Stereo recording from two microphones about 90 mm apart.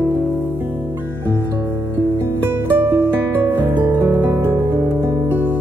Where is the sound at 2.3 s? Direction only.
25° right (ahead or behind).